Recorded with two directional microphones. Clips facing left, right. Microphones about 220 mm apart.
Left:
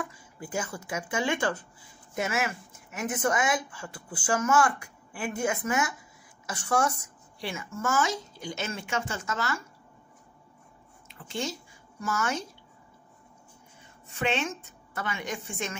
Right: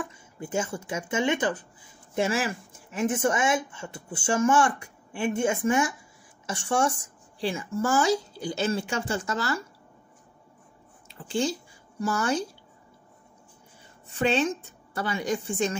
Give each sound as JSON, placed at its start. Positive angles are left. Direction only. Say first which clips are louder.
{"t": 0.0, "sound": "speech", "louder": "right 2 dB", "side_deg": -25}
{"t": 2.1, "sound": "a woman's voice", "louder": "right 4 dB", "side_deg": -30}
{"t": 11.1, "sound": "a sound", "louder": "right 6 dB", "side_deg": -30}
{"t": 12.0, "sound": "a woman's voice", "louder": "right 5 dB", "side_deg": -35}
{"t": 14.0, "sound": "a woman's voice", "louder": "right 5 dB", "side_deg": -35}